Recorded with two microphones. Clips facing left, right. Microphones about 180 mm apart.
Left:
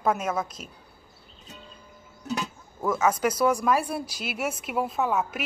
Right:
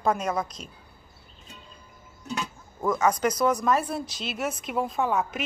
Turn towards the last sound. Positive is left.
turn(degrees=5)  # may be behind; listen again after turning